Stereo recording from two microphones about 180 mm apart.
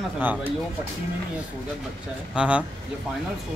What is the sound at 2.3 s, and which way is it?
Speech, 5° right (ahead or behind).